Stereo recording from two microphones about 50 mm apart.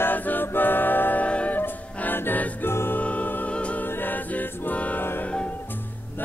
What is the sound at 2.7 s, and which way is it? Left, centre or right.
Music, left.